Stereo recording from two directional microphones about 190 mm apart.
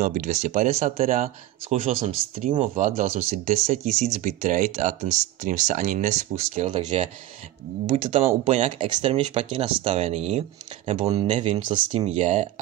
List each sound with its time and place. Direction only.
0.0 s speech: 40° right (ahead or behind)
12.2 s speech: 35° right (ahead or behind)